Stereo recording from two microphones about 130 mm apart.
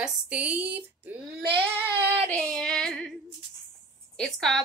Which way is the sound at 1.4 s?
40° right (ahead or behind).